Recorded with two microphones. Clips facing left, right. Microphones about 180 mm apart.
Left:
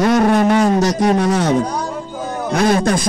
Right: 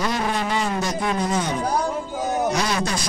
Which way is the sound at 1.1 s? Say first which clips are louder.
Left 8 dB; 75° left (ahead or behind).